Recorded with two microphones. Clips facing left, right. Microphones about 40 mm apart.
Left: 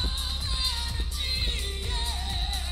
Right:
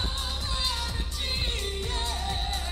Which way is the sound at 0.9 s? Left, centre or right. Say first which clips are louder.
Right 1 dB; centre.